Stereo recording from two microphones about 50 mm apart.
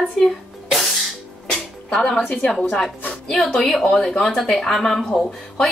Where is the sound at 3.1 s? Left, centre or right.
Centre.